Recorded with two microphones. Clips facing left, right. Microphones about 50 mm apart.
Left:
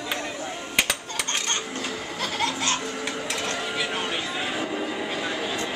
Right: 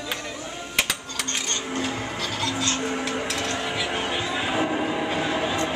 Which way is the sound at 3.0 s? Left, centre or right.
Centre.